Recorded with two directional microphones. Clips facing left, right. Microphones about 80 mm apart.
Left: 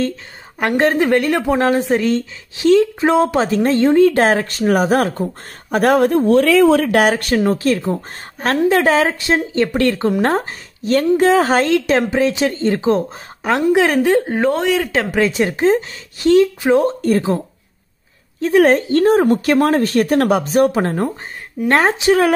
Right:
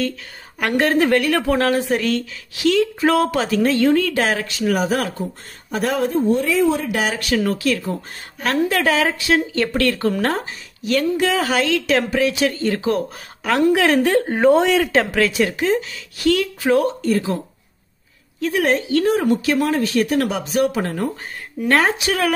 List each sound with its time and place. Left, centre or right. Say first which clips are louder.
0.6 s a woman's voice: left 2 dB; left
4.1 s a woman's voice: left 6 dB; left
6.2 s a woman's voice: left 5 dB; left
10.3 s a woman's voice: left 6 dB; left; by 13.9 s centre
14.2 s speech: right 2 dB; centre
15.1 s a woman's voice: left 2 dB; left
18.6 s a woman's voice: left 6 dB; left